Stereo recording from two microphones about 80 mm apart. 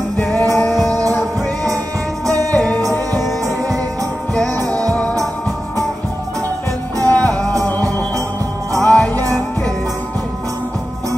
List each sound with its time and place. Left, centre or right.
0.2 s music: left
0.8 s music: right
2.5 s music: centre
3.4 s music: right
7.1 s music: centre